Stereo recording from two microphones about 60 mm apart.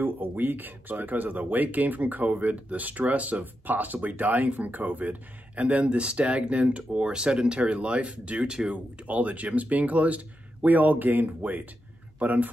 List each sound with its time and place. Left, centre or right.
0.0 s speech: right